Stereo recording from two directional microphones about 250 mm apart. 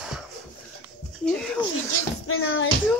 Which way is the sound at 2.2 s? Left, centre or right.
Left.